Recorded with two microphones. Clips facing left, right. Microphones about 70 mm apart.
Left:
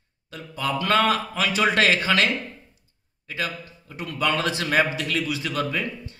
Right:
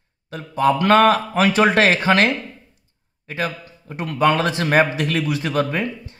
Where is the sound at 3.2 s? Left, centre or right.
Right.